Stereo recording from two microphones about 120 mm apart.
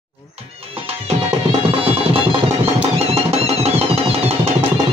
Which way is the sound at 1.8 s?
55° right (ahead or behind).